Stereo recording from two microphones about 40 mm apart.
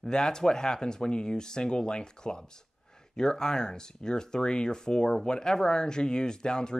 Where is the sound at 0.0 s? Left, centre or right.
Centre.